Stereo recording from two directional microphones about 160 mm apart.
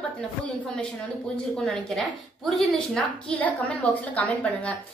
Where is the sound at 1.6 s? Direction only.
Centre (ahead or behind).